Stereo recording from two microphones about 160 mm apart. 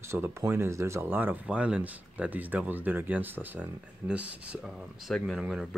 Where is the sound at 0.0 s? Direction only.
15° right (ahead or behind).